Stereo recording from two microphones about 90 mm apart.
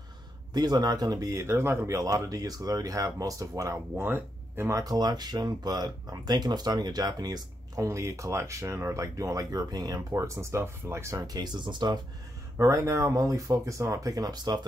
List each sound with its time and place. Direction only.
0.5 s speech: 50° right (ahead or behind)
3.9 s speech: 25° right (ahead or behind)
4.7 s speech: 45° right (ahead or behind)
10.1 s speech: 30° right (ahead or behind)
11.1 s speech: 50° right (ahead or behind)
12.5 s speech: 35° right (ahead or behind); by 14.7 s 50° right (ahead or behind)